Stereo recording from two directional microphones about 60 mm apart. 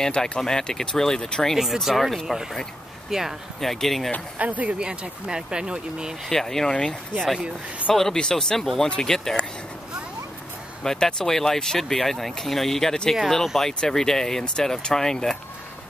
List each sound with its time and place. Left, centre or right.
0.0 s speech: centre
1.6 s speech: centre
4.4 s speech: right
6.2 s speech: centre
10.8 s speech: centre